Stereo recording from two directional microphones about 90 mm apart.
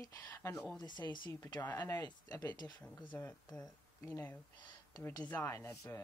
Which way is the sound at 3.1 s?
25° left (ahead or behind).